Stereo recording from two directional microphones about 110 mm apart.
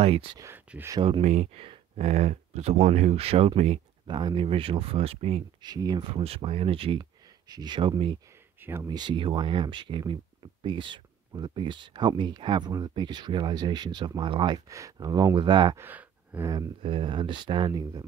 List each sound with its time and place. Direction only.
0.0 s speech: 55° right (ahead or behind)
0.7 s speech: 10° right (ahead or behind)
1.2 s speech: 90° right; by 3.8 s 75° right (ahead or behind)
4.1 s speech: 40° right (ahead or behind); by 5.4 s 65° right (ahead or behind)
5.6 s speech: 40° right (ahead or behind)
6.2 s speech: 60° right (ahead or behind)
7.0 s speech: 35° right (ahead or behind)
8.5 s a sound: 20° right (ahead or behind)
8.8 s speech: 45° right (ahead or behind)
14.7 s speech: 30° right (ahead or behind)
15.7 s gasp: 20° right (ahead or behind)
16.8 s speech: 50° right (ahead or behind)